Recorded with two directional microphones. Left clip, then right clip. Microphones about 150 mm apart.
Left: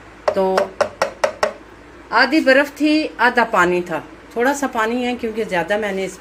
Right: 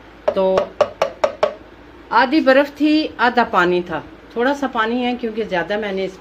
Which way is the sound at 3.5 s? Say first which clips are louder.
Even; centre (ahead or behind).